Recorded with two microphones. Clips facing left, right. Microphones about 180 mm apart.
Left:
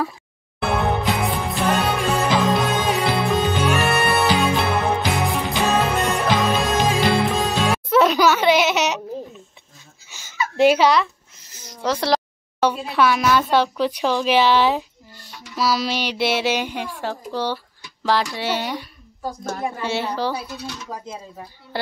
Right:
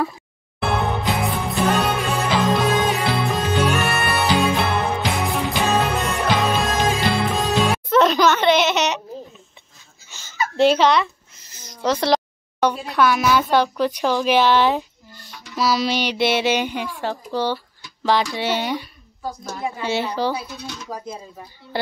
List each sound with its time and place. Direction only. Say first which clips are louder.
0.6 s music: left 1 dB; centre (ahead or behind)
10.0 s a sound: right 2 dB; 10° left (ahead or behind)
10.5 s a child's voice: even; 10° left (ahead or behind)
19.4 s a woman's voice: left 2 dB; 50° left (ahead or behind)
19.8 s speech: right 4 dB; centre (ahead or behind)